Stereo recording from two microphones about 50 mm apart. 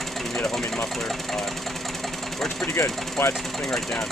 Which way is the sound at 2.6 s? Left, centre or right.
Left.